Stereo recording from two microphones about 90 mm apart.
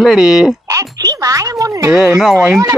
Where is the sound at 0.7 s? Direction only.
40° right (ahead or behind).